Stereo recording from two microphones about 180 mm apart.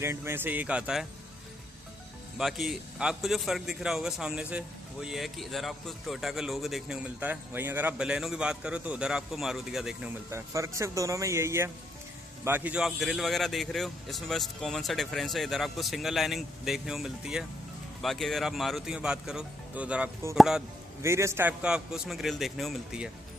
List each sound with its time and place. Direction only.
0.0 s speech: 15° right (ahead or behind)
2.3 s speech: centre (ahead or behind)
10.3 s speech: 15° right (ahead or behind)
21.0 s speech: 15° right (ahead or behind)